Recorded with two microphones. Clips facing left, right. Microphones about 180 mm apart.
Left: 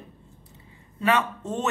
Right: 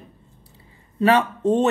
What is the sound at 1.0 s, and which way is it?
Speech, 35° right (ahead or behind).